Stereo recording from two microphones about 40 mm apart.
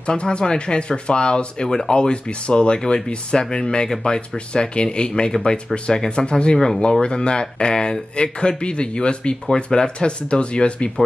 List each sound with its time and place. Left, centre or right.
0.0 s speech: left